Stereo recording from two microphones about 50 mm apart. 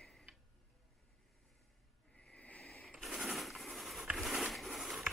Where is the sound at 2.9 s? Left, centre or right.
Centre.